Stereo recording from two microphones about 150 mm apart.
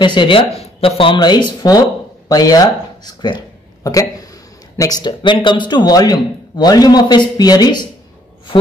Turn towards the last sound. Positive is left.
turn(degrees=25)  # may be behind; listen again after turning